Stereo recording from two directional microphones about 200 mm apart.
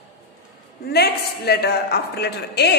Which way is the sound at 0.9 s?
55° left (ahead or behind).